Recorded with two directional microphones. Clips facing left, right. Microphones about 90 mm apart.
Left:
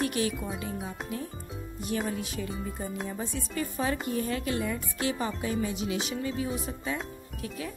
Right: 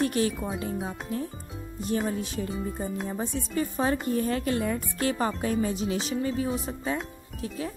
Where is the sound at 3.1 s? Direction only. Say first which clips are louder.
Right 4 dB; 30° right (ahead or behind).